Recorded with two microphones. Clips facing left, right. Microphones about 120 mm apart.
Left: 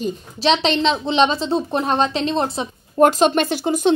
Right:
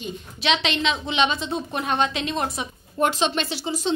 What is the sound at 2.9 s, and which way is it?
Speech, 45° left (ahead or behind).